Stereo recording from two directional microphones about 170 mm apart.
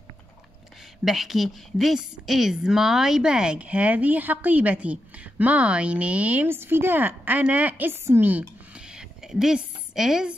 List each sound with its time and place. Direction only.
1.0 s a woman's voice: centre (ahead or behind)